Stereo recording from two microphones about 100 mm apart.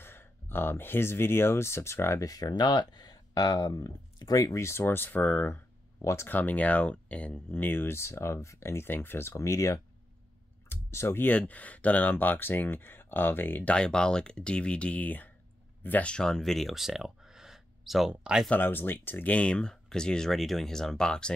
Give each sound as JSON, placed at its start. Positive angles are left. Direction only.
{"t": 0.0, "sound": "speech", "side_deg": 25}
{"t": 13.7, "sound": "speech", "side_deg": 10}
{"t": 18.5, "sound": "speech", "side_deg": 20}